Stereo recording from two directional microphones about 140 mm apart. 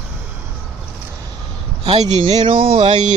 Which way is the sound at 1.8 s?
45° right (ahead or behind).